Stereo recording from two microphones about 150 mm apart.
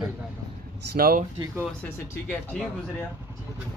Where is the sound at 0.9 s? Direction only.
80° right.